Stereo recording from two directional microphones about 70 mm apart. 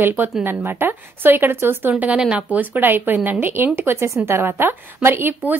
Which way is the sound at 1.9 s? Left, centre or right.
Centre.